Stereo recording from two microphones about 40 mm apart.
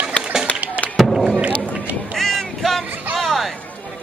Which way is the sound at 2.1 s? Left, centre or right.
Centre.